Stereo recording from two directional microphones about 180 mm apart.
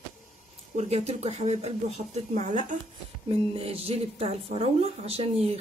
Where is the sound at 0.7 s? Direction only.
35° right (ahead or behind).